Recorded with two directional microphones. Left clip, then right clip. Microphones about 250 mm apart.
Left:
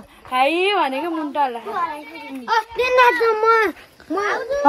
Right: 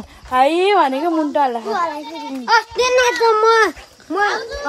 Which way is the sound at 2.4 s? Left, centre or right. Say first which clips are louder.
Right 5 dB; right.